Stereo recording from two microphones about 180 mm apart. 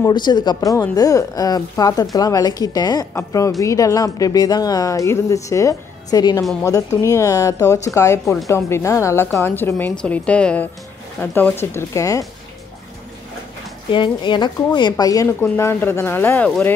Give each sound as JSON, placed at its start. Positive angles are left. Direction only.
{"t": 0.0, "sound": "a woman's voice", "side_deg": 25}
{"t": 13.8, "sound": "speech", "side_deg": 25}